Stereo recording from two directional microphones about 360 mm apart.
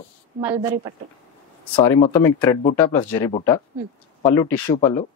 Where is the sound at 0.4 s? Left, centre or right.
Centre.